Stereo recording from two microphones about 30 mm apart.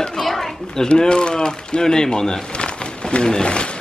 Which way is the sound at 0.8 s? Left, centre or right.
Left.